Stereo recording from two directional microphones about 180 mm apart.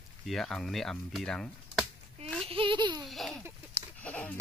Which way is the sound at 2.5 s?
30° right (ahead or behind).